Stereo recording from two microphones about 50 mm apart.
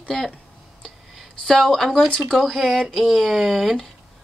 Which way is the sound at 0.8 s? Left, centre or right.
Centre.